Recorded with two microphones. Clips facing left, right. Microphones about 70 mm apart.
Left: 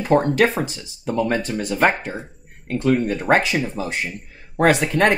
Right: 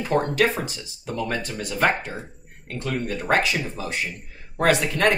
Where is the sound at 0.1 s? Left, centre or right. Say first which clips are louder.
Left 4 dB; left.